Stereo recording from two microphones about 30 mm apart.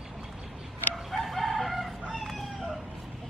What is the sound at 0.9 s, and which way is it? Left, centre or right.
Chicken, centre.